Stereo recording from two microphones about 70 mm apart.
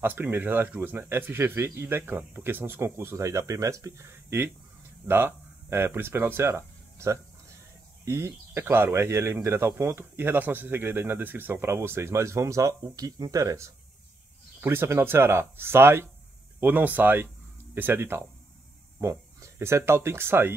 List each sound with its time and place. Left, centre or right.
0.0 s speech: right
14.6 s speech: right